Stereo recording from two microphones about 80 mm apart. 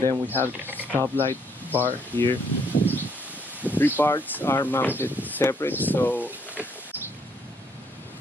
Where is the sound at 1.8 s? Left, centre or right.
Left.